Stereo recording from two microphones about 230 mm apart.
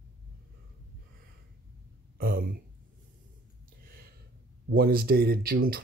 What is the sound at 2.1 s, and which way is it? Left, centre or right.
Speech, right.